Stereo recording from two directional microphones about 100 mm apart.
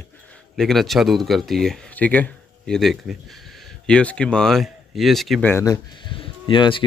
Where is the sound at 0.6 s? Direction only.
5° left (ahead or behind).